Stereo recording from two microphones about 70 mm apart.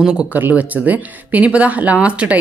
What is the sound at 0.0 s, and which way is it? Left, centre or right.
A woman's voice, centre.